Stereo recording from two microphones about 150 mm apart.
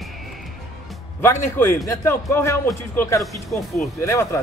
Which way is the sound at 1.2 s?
15° left (ahead or behind).